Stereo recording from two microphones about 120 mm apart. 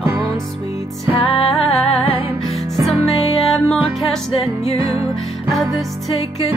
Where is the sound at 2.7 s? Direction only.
Centre (ahead or behind).